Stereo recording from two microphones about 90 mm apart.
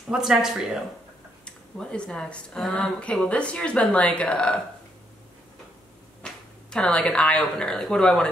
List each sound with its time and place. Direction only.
0.1 s speech: 5° right (ahead or behind)
1.4 s speech: 10° left (ahead or behind)
6.2 s speech: 10° left (ahead or behind)